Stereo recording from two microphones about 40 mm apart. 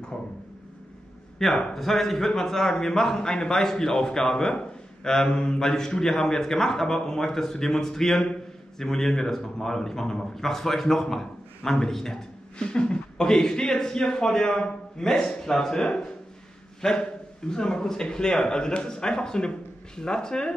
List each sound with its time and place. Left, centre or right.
1.6 s a man's voice: centre